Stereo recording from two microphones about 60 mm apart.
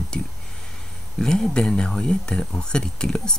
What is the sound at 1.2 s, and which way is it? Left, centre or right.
Speech, centre.